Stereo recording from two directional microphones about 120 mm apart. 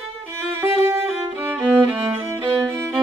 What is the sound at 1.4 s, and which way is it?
Music, 15° right (ahead or behind).